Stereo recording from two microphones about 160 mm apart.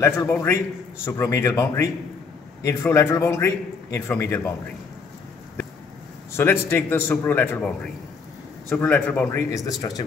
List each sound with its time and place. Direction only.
0.0 s a man's voice: 20° left (ahead or behind)
6.3 s a man's voice: 15° left (ahead or behind)
9.5 s speech: 20° left (ahead or behind)